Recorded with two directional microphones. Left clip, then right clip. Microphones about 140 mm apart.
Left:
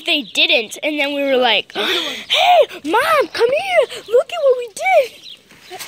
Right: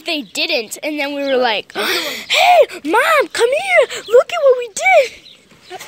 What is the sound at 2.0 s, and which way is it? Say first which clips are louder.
Speech: right 3 dB; 25° right (ahead or behind).